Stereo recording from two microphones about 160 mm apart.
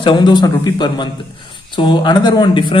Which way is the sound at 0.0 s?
25° left (ahead or behind).